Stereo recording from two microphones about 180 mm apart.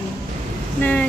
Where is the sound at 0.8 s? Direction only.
10° left (ahead or behind).